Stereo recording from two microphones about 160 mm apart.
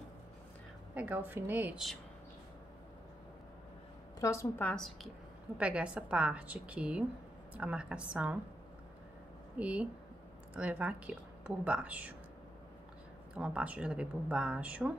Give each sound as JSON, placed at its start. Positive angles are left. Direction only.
{"t": 0.9, "sound": "speech", "side_deg": -10}
{"t": 4.2, "sound": "a woman's voice", "side_deg": 20}
{"t": 4.6, "sound": "a woman's voice", "side_deg": 0}
{"t": 9.6, "sound": "speech", "side_deg": -10}
{"t": 13.4, "sound": "speech", "side_deg": -5}